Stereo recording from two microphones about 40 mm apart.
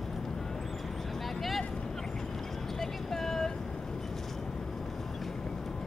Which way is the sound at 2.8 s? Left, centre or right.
Centre.